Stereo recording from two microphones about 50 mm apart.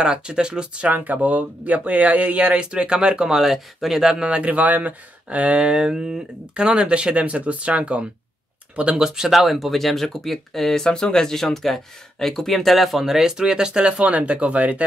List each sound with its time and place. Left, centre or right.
0.0 s speech: centre
0.8 s speech: right; by 4.3 s centre
4.3 s speech: right
9.0 s speech: centre; by 14.8 s right